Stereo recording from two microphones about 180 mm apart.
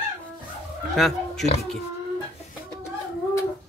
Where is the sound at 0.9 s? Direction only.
Centre (ahead or behind).